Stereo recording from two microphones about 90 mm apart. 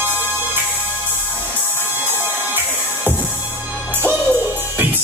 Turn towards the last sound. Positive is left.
turn(degrees=-25)  # may be behind; listen again after turning